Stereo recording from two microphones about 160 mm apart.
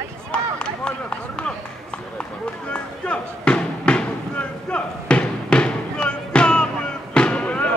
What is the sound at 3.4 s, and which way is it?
Basketball bounce, 5° left (ahead or behind).